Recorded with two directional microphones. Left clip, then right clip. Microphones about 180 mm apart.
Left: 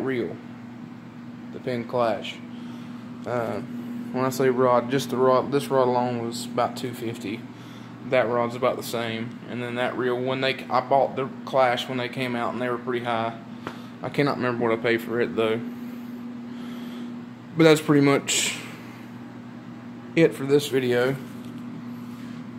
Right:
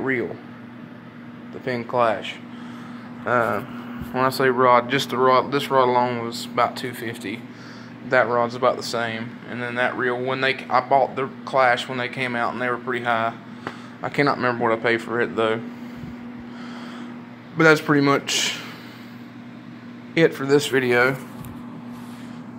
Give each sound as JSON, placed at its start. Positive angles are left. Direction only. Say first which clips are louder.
{"t": 1.7, "sound": "speech", "louder": "right 4 dB", "side_deg": -5}
{"t": 4.4, "sound": "speech", "louder": "right 3 dB", "side_deg": 5}
{"t": 8.1, "sound": "speech", "louder": "right 3 dB", "side_deg": 0}
{"t": 17.6, "sound": "speech", "louder": "right 2 dB", "side_deg": 20}
{"t": 20.2, "sound": "speech", "louder": "right 2 dB", "side_deg": 0}